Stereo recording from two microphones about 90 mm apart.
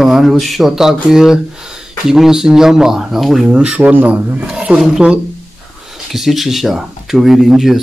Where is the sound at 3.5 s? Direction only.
15° right (ahead or behind).